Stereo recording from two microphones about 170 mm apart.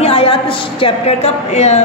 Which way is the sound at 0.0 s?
35° left (ahead or behind).